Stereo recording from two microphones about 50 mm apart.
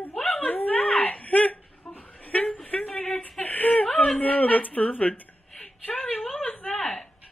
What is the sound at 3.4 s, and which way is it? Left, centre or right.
Whimper, left.